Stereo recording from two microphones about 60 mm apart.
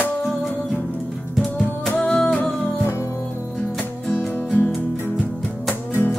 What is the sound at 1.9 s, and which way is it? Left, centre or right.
Music, centre.